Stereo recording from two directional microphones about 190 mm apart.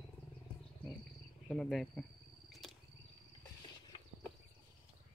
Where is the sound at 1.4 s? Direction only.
Centre (ahead or behind).